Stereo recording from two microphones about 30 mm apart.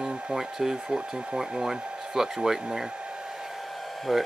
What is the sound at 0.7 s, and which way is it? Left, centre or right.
Speech, right.